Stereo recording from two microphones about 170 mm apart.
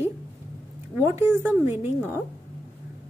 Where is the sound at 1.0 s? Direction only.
15° right (ahead or behind).